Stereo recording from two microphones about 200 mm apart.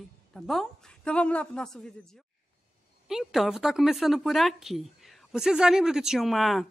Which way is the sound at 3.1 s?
Centre (ahead or behind).